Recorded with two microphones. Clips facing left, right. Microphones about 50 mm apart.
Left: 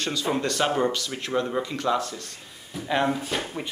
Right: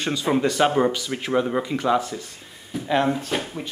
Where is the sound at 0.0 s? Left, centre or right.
Centre.